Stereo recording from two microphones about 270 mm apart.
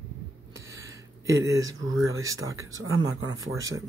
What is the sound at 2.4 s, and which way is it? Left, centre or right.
Speech, centre.